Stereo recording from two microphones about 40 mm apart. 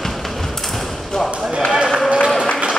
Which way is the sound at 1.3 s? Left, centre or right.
Right.